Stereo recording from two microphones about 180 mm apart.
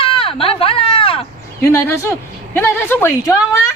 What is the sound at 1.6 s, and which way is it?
A woman's voice, 15° left (ahead or behind).